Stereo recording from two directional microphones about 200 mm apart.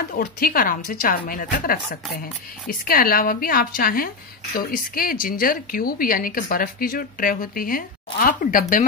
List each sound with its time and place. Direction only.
0.1 s speech: 50° left (ahead or behind)